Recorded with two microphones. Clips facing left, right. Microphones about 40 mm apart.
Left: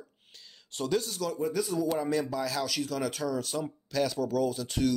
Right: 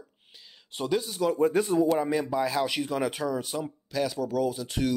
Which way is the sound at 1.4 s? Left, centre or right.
Right.